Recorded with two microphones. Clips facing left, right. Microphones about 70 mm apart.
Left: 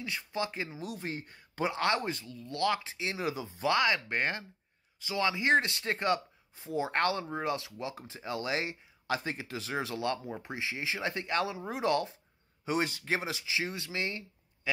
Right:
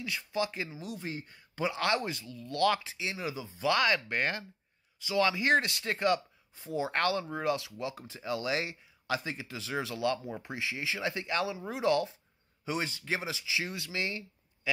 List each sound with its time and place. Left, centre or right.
0.0 s speech: left
0.7 s speech: left
1.8 s speech: left
2.5 s speech: centre
2.8 s speech: left
3.7 s speech: centre
4.1 s speech: left